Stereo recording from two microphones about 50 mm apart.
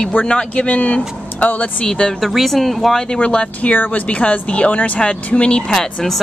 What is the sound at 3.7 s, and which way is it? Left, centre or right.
Speech, left.